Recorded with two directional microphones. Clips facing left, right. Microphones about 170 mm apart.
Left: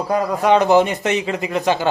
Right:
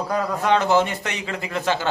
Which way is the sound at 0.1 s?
15° left (ahead or behind).